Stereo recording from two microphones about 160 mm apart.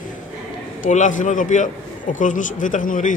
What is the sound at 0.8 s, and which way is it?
A man's voice, 50° left (ahead or behind).